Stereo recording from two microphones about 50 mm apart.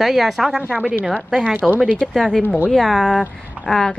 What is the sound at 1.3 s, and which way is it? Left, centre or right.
Speech, centre.